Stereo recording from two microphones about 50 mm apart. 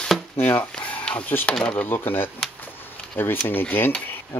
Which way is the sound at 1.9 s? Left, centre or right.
Left.